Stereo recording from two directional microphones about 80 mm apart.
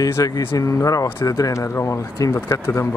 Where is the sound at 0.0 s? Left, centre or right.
Left.